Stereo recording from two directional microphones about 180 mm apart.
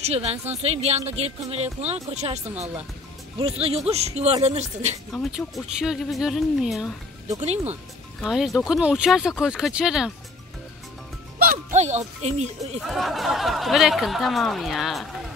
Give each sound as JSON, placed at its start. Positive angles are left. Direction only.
{"t": 0.0, "sound": "speech", "side_deg": -35}
{"t": 5.1, "sound": "speech", "side_deg": 0}
{"t": 7.2, "sound": "speech", "side_deg": -35}
{"t": 8.2, "sound": "speech", "side_deg": 0}
{"t": 11.7, "sound": "speech", "side_deg": -40}
{"t": 12.8, "sound": "speech", "side_deg": 0}